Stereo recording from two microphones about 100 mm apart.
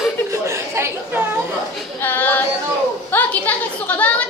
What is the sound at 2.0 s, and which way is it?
Female singing, 20° left (ahead or behind).